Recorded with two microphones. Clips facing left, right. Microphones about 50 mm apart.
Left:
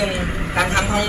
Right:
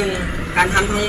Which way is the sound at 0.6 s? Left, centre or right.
Centre.